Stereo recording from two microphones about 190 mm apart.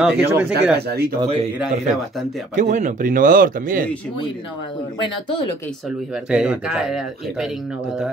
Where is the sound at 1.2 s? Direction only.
30° right (ahead or behind).